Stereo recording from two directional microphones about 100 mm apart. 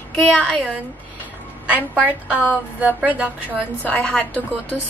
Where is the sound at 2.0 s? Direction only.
15° right (ahead or behind).